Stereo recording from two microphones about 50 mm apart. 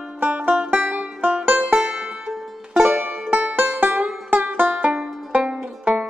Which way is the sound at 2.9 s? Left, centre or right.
Right.